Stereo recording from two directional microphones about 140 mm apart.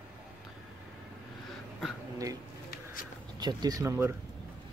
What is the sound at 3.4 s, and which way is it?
Speech, 30° right (ahead or behind).